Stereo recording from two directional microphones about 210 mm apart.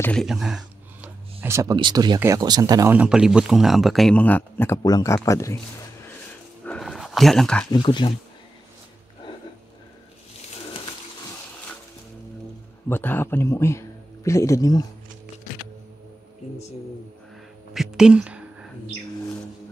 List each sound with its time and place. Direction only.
0.0 s speech: 5° left (ahead or behind)
6.6 s a sound: 5° left (ahead or behind)
7.7 s speech: 20° left (ahead or behind)
12.8 s speech: 10° left (ahead or behind)
17.7 s speech: 5° right (ahead or behind)